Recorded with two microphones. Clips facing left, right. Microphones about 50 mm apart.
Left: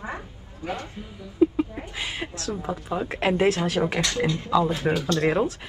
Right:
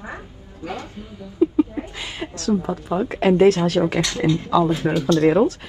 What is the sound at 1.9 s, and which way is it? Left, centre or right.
Speech, centre.